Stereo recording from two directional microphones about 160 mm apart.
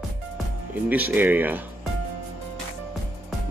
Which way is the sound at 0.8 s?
10° right (ahead or behind).